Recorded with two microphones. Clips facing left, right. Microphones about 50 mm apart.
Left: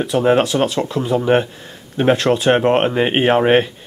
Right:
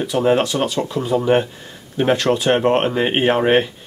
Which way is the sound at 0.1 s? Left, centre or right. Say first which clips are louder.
Left 2 dB; left.